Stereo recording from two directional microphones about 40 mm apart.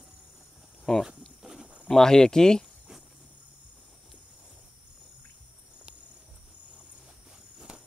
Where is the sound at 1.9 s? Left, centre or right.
Centre.